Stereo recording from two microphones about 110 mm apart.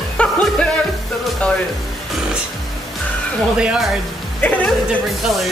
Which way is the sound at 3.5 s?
5° right (ahead or behind).